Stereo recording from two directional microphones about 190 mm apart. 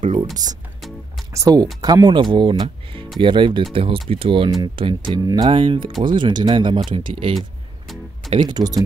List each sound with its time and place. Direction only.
1.3 s speech: 20° right (ahead or behind)